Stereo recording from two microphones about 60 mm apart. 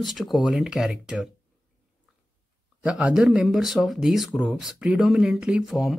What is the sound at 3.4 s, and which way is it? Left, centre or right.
Speech, centre.